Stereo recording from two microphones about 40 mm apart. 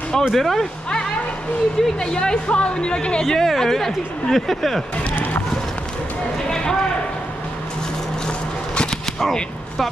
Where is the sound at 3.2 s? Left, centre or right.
Centre.